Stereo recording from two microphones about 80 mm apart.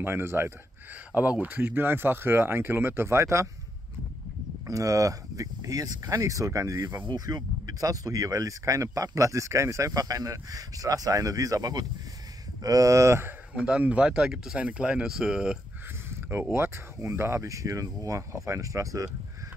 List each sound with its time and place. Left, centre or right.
0.0 s speech: right
1.1 s speech: centre; by 3.4 s right
4.6 s speech: right
7.1 s speech: right
13.7 s speech: centre
16.1 s a sound: right
16.5 s speech: right